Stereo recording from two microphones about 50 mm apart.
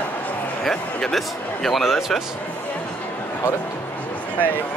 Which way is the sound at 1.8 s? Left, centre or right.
Centre.